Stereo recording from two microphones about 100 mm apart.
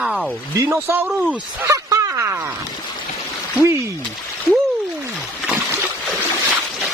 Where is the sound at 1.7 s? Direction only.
35° right (ahead or behind).